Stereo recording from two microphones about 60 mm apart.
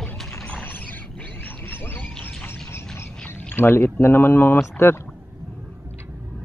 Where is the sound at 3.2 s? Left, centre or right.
Left.